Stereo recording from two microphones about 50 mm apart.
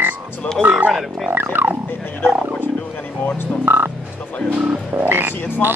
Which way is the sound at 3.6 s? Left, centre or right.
Right.